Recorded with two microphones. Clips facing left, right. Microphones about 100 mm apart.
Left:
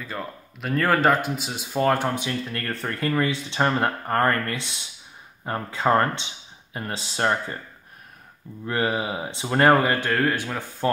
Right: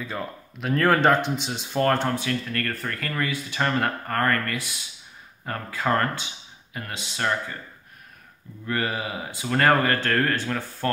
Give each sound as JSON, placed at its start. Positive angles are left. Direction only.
{"t": 0.0, "sound": "speech", "side_deg": 0}
{"t": 8.6, "sound": "speech", "side_deg": 20}